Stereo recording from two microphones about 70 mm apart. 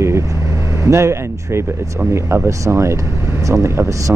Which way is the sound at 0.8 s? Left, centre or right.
Right.